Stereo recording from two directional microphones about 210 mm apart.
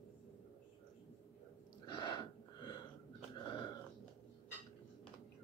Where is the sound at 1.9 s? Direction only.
20° left (ahead or behind).